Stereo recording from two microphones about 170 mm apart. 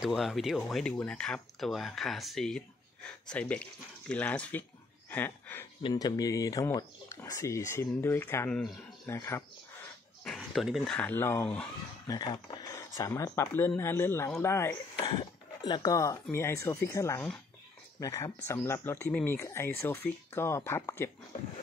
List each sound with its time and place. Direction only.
0.0 s speech: centre (ahead or behind)
5.8 s speech: 25° left (ahead or behind)
10.2 s speech: centre (ahead or behind)
12.1 s speech: 25° left (ahead or behind)
15.0 s speech: 30° left (ahead or behind)